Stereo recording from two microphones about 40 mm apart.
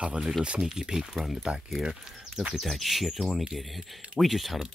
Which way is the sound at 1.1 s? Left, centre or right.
Centre.